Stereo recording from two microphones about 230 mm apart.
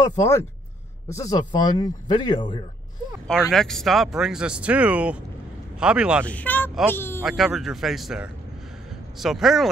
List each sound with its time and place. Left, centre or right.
0.0 s speech: centre
3.5 s speech: centre
6.2 s speech: centre
7.2 s speech: centre